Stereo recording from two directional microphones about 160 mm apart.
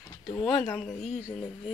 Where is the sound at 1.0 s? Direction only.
40° left (ahead or behind).